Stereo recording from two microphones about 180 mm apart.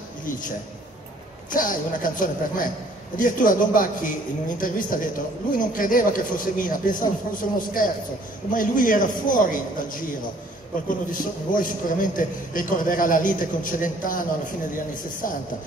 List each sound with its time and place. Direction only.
1.5 s a man's voice: 50° left (ahead or behind)
15.2 s a man's voice: 50° left (ahead or behind)